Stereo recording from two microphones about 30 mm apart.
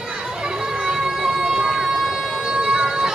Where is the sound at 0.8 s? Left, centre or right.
Centre.